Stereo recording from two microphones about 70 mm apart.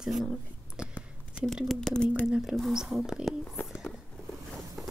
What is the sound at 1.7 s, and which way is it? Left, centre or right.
Speech, centre.